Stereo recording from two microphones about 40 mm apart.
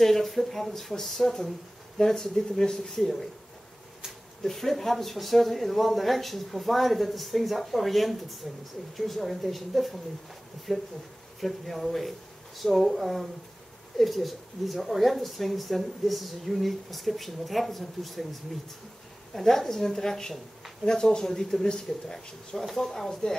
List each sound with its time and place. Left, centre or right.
0.0 s speech: centre
4.4 s speech: centre
22.7 s speech: centre